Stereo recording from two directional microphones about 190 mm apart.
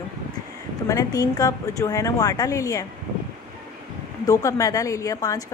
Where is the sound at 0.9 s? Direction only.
20° left (ahead or behind).